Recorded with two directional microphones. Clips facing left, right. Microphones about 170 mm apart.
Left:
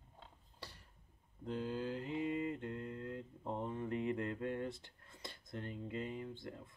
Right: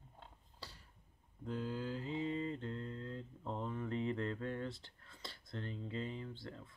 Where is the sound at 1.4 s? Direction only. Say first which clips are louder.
Left 1 dB; 20° left (ahead or behind).